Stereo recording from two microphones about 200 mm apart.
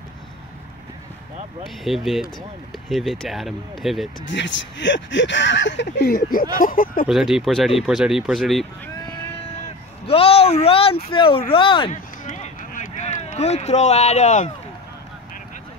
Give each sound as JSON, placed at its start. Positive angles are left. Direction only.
{"t": 1.9, "sound": "speech", "side_deg": 0}
{"t": 4.3, "sound": "speech", "side_deg": 65}
{"t": 7.1, "sound": "speech", "side_deg": 0}
{"t": 10.0, "sound": "speech", "side_deg": 30}
{"t": 11.9, "sound": "a sound", "side_deg": 35}